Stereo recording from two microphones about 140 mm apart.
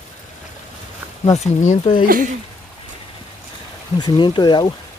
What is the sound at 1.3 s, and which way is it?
Speech, 55° left (ahead or behind).